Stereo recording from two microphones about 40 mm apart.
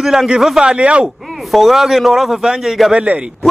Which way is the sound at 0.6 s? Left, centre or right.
Right.